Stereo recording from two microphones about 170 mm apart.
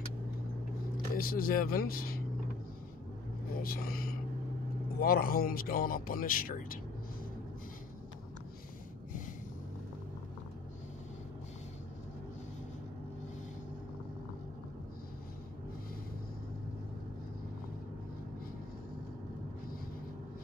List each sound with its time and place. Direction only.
1.1 s speech: 60° left (ahead or behind)
3.5 s speech: 60° left (ahead or behind)